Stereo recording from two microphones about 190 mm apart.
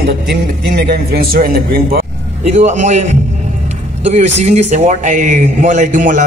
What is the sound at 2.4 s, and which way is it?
Speech, 35° right (ahead or behind).